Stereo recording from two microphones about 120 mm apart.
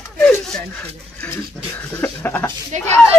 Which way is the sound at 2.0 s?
20° left (ahead or behind).